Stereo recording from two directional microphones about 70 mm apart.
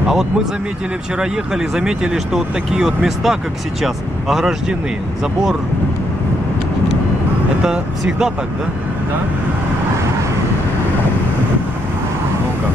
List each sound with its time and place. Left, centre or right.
1.2 s speech: centre
7.6 s speech: centre